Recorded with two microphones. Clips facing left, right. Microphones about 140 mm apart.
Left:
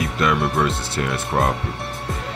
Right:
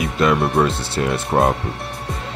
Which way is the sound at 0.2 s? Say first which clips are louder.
Right 4 dB; 30° right (ahead or behind).